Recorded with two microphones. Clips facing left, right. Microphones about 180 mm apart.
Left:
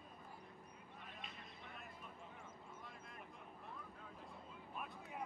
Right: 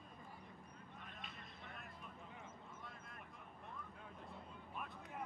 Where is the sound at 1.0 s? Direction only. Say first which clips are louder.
Left 1 dB; centre (ahead or behind).